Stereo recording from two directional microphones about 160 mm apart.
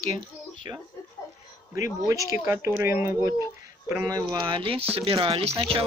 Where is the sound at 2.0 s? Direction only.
20° right (ahead or behind).